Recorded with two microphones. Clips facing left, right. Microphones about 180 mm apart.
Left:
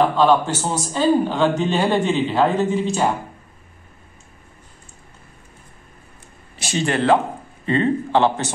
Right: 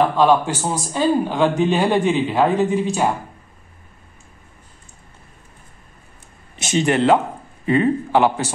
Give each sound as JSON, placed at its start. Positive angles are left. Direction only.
{"t": 0.0, "sound": "a man's voice", "side_deg": -10}
{"t": 6.6, "sound": "a man's voice", "side_deg": -20}